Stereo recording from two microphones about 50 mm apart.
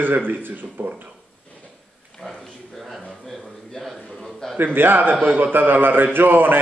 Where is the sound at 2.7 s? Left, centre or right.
Centre.